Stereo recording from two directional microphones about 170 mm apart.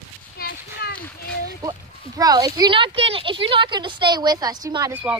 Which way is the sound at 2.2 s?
20° right (ahead or behind).